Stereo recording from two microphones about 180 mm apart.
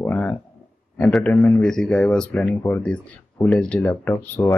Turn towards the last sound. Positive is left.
turn(degrees=10)  # may be behind; listen again after turning